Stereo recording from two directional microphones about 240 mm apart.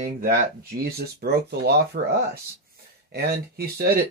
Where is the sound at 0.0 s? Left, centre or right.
Right.